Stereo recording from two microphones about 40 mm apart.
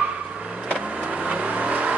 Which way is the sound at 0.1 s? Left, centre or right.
Right.